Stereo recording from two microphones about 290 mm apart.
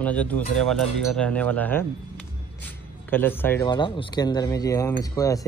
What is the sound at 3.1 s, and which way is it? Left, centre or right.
A man's voice, centre.